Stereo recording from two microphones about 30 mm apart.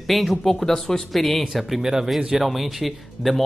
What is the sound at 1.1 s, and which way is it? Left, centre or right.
Speech, centre.